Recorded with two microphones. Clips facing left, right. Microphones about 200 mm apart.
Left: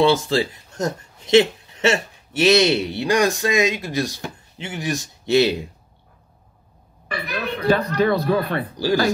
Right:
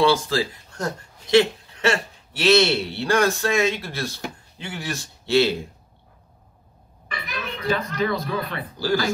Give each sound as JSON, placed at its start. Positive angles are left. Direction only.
{"t": 0.0, "sound": "speech", "side_deg": 25}
{"t": 7.2, "sound": "a sound", "side_deg": 40}
{"t": 7.9, "sound": "a man's voice", "side_deg": 45}